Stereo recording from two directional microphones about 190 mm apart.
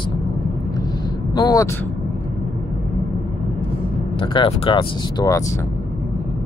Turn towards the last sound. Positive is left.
turn(degrees=20)  # may be behind; listen again after turning